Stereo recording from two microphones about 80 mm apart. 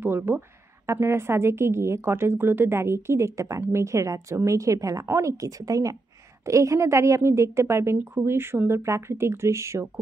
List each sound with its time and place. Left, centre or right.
0.0 s a woman's voice: right